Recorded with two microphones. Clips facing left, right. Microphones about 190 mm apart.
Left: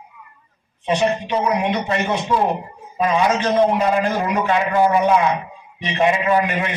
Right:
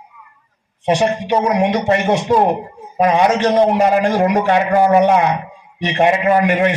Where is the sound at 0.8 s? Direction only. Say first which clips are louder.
Right 3 dB; 80° right.